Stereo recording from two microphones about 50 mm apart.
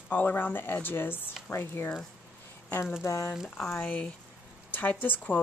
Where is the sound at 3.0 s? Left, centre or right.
Left.